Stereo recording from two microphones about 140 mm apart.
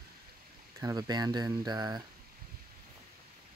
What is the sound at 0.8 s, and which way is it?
Speech, 25° right (ahead or behind).